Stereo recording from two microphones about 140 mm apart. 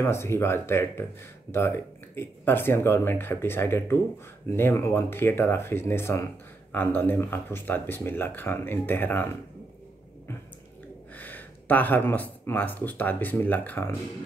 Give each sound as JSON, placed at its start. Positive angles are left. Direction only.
{"t": 0.0, "sound": "speech", "side_deg": 20}
{"t": 11.1, "sound": "speech", "side_deg": 15}